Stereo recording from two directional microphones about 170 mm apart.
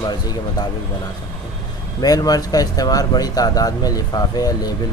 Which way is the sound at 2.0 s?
20° left (ahead or behind).